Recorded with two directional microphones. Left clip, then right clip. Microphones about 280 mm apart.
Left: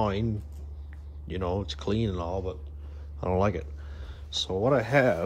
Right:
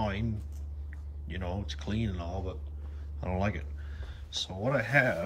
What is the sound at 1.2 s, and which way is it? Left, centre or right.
Speech, left.